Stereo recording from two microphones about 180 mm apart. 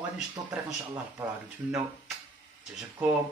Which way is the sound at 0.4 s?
20° right (ahead or behind).